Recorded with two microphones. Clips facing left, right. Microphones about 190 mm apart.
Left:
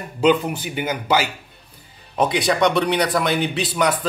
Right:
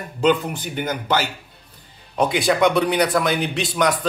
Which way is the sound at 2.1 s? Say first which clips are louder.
Even; centre (ahead or behind).